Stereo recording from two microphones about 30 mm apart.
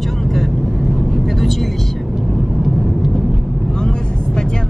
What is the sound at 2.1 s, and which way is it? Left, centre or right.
Vehicle, centre.